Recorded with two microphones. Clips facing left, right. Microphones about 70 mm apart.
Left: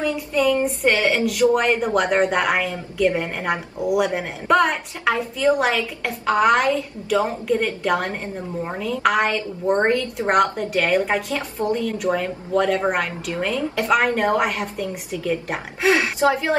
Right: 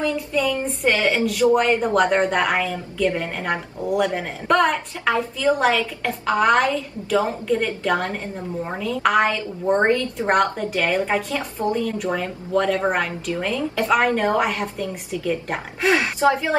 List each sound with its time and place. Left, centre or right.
0.0 s a woman's voice: centre